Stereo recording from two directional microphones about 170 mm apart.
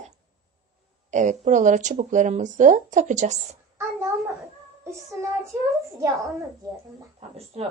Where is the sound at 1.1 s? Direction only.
45° right (ahead or behind).